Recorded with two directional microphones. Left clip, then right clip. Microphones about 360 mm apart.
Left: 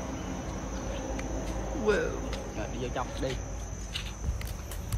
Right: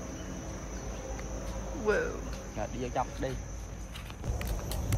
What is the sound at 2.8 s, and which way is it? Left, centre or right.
Cricket, centre.